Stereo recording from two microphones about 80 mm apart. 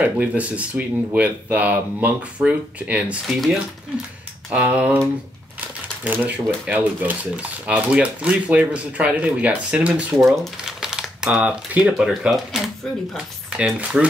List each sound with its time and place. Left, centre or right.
0.0 s speech: centre
4.5 s speech: centre
10.1 s crumpling: centre
11.7 s speech: centre
12.3 s speech: centre
13.5 s speech: centre